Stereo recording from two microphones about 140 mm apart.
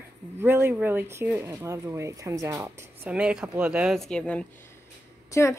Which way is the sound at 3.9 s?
5° left (ahead or behind).